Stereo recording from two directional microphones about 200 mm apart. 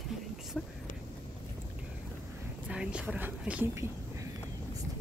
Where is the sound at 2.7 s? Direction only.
5° right (ahead or behind).